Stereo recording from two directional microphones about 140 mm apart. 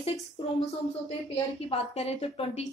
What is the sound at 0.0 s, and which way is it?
A woman's voice, 45° left (ahead or behind).